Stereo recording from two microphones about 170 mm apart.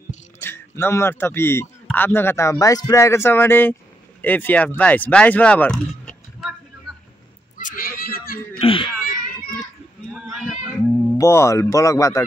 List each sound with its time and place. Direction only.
0.4 s a man's voice: 15° left (ahead or behind)
7.5 s cat: 55° left (ahead or behind)
8.5 s baby cry: 30° left (ahead or behind)
9.0 s children playing: 55° left (ahead or behind)
11.1 s a man's voice: 15° left (ahead or behind)